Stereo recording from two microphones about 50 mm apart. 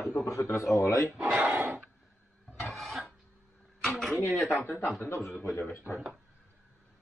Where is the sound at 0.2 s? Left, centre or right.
Left.